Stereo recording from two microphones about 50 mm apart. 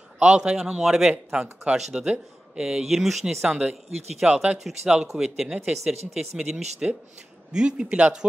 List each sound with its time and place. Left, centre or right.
0.2 s speech: centre
4.2 s speech: right
4.8 s speech: centre